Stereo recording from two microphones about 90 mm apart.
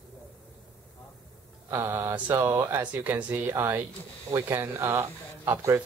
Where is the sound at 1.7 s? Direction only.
30° right (ahead or behind).